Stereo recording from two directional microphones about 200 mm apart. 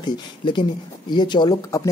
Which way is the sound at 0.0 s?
20° left (ahead or behind).